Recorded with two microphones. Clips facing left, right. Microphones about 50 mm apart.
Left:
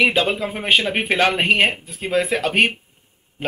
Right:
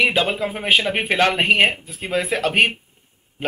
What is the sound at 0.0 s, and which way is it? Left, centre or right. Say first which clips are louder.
Speech: left 1 dB; centre.